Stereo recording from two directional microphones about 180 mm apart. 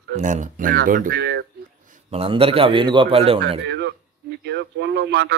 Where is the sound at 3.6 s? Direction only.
75° right (ahead or behind).